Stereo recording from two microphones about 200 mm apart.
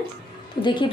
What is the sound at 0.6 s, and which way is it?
Speech, 25° left (ahead or behind).